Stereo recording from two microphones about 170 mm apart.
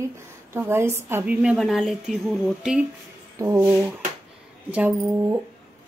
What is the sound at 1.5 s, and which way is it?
Speech, centre (ahead or behind).